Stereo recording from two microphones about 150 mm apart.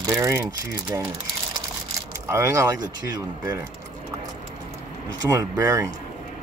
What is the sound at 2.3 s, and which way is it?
Speech, 20° right (ahead or behind).